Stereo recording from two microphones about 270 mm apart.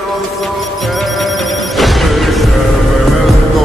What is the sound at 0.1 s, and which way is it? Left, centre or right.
Music, centre.